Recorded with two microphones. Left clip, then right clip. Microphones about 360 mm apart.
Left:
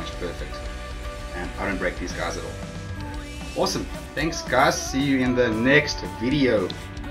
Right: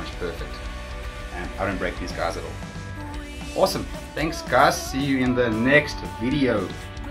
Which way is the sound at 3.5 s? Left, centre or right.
Centre.